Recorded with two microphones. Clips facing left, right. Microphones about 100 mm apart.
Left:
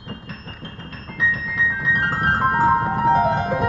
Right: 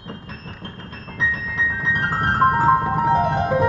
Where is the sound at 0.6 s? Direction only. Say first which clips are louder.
Even; 45° right (ahead or behind).